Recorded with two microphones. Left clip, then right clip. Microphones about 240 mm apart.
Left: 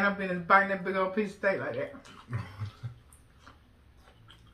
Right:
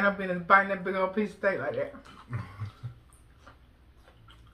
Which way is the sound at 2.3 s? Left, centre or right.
Centre.